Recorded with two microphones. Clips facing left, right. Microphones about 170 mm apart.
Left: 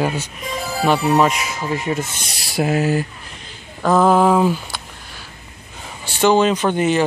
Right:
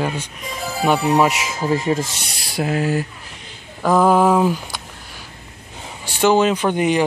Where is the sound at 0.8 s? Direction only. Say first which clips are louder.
Even; 10° right (ahead or behind).